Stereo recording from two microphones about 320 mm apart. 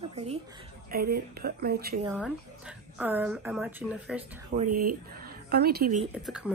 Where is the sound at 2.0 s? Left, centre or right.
Centre.